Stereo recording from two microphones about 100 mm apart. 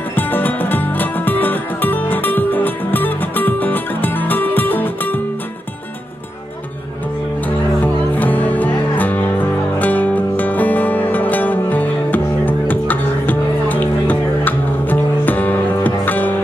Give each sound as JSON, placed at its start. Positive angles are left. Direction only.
{"t": 0.1, "sound": "music", "side_deg": 20}
{"t": 7.4, "sound": "music", "side_deg": 15}